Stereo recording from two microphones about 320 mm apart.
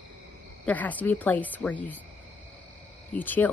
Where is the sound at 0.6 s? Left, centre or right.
Centre.